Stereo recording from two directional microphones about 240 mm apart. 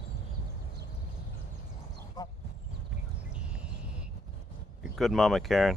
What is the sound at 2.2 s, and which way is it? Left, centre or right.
Quack, centre.